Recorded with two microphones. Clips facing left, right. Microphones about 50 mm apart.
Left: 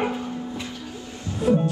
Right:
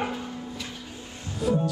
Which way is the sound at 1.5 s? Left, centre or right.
Left.